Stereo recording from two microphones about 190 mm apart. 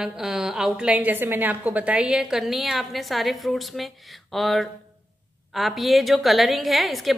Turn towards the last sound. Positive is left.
turn(degrees=0)  # may be behind; listen again after turning